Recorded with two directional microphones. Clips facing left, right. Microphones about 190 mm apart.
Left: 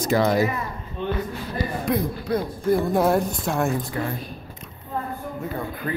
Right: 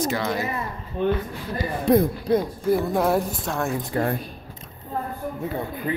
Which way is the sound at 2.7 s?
Centre (ahead or behind).